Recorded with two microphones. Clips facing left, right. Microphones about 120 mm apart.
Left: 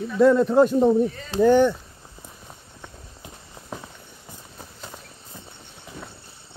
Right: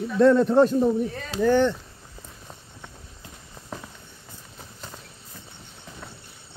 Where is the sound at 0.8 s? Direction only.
20° left (ahead or behind).